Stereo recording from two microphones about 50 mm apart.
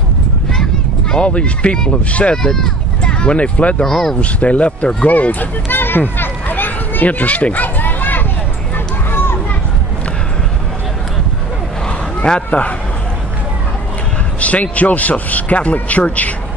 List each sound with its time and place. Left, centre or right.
1.1 s speech: left
2.3 s speech: centre
3.0 s speech: left
3.8 s speech: centre
4.2 s speech: left
5.1 s a sound: left
9.1 s children playing: left
12.4 s speech: left
14.4 s speech: left